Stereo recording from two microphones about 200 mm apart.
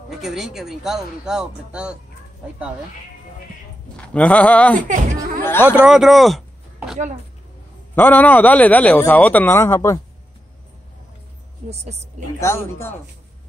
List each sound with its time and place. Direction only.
0.1 s speech: centre (ahead or behind)
3.9 s a sound: 5° left (ahead or behind)
4.7 s speech: 40° right (ahead or behind)
5.4 s a sound: 10° left (ahead or behind)
5.7 s a man's voice: 5° right (ahead or behind); by 9.9 s 15° left (ahead or behind)
11.7 s a woman's voice: 35° right (ahead or behind)
12.4 s a man's voice: 15° left (ahead or behind)